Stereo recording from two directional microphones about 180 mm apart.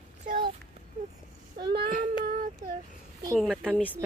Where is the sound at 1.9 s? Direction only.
50° right (ahead or behind).